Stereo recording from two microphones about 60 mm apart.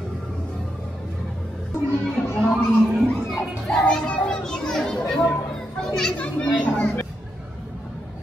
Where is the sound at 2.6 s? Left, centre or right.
Left.